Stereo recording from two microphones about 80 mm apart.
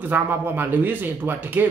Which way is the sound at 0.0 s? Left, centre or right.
Right.